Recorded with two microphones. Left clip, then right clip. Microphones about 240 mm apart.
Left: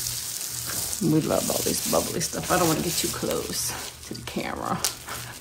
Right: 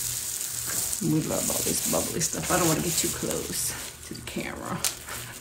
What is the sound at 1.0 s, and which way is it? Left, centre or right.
Speech, left.